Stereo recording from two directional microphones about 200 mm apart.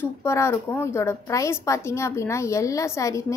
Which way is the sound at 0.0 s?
15° left (ahead or behind).